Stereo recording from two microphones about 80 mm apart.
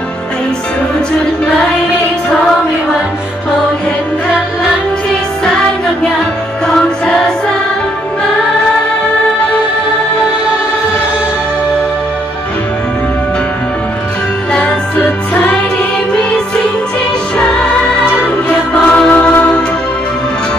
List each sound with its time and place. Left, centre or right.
6.7 s music: centre
14.5 s music: centre
15.3 s music: left
17.4 s music: centre
18.7 s music: centre